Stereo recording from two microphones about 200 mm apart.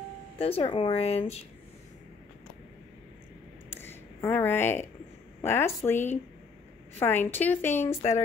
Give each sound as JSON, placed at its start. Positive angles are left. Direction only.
{"t": 0.4, "sound": "speech", "side_deg": 30}
{"t": 3.8, "sound": "a sound", "side_deg": 10}
{"t": 5.4, "sound": "a woman's voice", "side_deg": 10}